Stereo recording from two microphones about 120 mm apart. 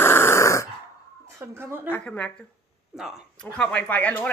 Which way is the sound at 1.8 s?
15° left (ahead or behind).